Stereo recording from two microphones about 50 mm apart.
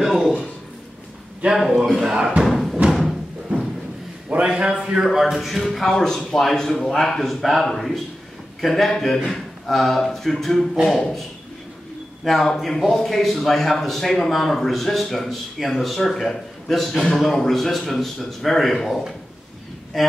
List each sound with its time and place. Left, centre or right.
0.0 s a sound: centre
1.4 s a man's voice: right
1.8 s a man's voice: centre
2.4 s music: centre
4.3 s a man's voice: right
5.1 s a man's voice: centre
12.3 s a man's voice: centre